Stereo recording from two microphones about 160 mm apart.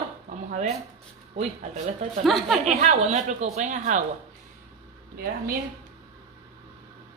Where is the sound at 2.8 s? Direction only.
45° right (ahead or behind).